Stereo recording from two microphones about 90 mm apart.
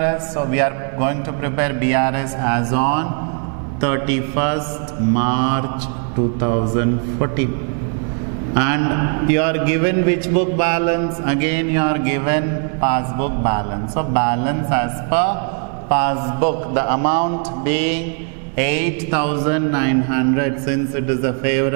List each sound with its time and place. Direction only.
0.0 s a man's voice: 15° right (ahead or behind)
8.5 s a man's voice: 15° right (ahead or behind)